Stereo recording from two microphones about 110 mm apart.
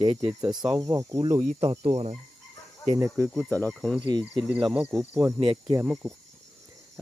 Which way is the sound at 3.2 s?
10° left (ahead or behind).